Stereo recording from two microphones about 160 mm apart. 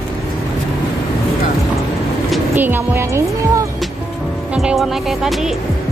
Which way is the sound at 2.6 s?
10° right (ahead or behind).